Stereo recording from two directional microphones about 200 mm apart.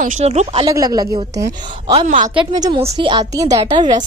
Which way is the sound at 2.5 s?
20° right (ahead or behind).